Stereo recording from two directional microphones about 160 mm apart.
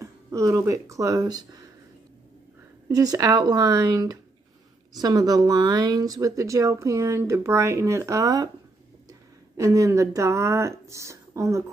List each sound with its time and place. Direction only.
0.0 s speech: 20° right (ahead or behind)
2.9 s speech: 25° right (ahead or behind)
9.6 s speech: 20° right (ahead or behind)